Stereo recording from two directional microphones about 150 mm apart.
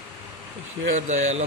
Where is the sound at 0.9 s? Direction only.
50° right (ahead or behind).